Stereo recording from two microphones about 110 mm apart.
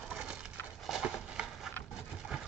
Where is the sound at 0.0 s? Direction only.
5° right (ahead or behind).